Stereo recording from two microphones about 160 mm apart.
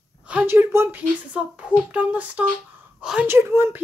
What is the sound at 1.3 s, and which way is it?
Speech, 5° right (ahead or behind).